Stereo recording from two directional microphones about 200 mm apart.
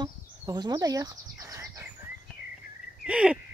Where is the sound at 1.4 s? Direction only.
15° right (ahead or behind).